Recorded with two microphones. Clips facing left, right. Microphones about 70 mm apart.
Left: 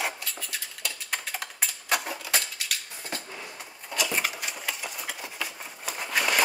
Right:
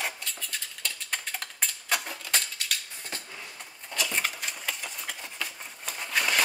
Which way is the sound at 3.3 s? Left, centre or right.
Centre.